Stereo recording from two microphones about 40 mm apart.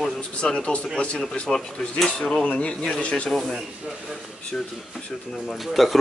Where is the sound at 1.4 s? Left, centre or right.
Centre.